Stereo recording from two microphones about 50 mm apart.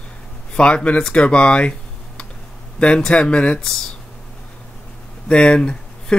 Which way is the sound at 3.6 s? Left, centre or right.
Centre.